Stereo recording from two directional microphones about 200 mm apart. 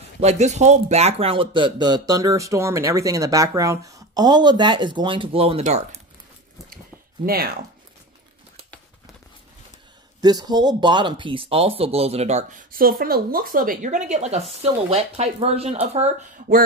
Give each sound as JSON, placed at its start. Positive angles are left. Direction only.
{"t": 0.2, "sound": "speech", "side_deg": -35}
{"t": 7.2, "sound": "speech", "side_deg": -50}
{"t": 10.2, "sound": "speech", "side_deg": -20}